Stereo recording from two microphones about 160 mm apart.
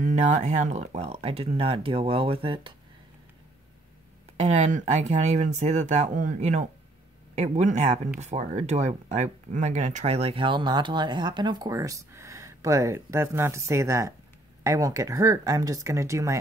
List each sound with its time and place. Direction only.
0.0 s speech: 50° right (ahead or behind)
4.4 s speech: 45° right (ahead or behind); by 16.3 s 20° right (ahead or behind)